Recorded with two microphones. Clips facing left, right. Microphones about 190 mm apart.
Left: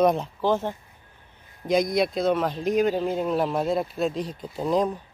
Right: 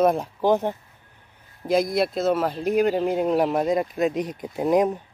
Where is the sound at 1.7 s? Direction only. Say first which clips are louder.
Right 1 dB; 5° right (ahead or behind); by 5.0 s 20° right (ahead or behind).